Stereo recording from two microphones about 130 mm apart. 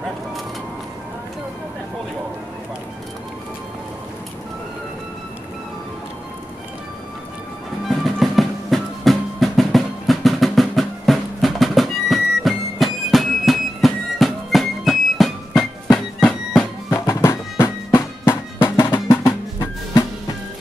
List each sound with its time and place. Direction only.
8.0 s drum: centre (ahead or behind)
16.9 s music: 20° left (ahead or behind)